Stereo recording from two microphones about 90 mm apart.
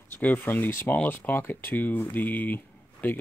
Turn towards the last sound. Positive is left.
turn(degrees=20)  # may be behind; listen again after turning